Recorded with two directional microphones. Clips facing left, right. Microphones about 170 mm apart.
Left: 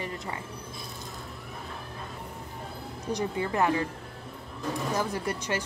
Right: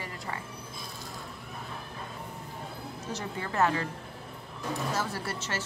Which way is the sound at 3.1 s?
15° left (ahead or behind).